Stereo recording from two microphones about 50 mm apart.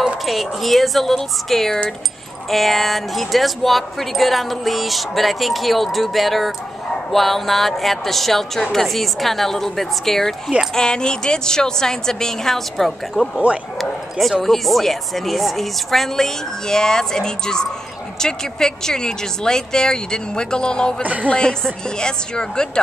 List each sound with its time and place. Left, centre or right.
0.2 s speech: centre
21.0 s speech: right
21.3 s speech: centre